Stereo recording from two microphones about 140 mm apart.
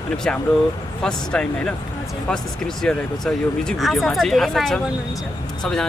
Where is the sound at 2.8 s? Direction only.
5° left (ahead or behind).